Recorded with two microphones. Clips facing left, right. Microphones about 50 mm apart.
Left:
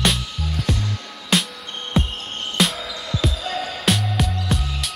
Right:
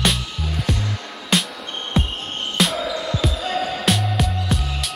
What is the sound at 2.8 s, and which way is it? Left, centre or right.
Music, right.